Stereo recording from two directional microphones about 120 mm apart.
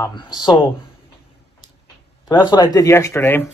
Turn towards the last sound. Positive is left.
turn(degrees=15)  # may be behind; listen again after turning